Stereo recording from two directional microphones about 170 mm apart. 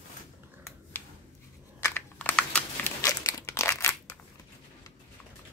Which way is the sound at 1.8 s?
10° left (ahead or behind).